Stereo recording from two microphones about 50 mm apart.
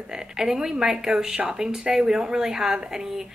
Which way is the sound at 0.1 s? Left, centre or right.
Centre.